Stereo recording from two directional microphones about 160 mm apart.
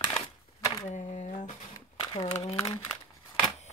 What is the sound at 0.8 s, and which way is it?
Speech, 50° left (ahead or behind).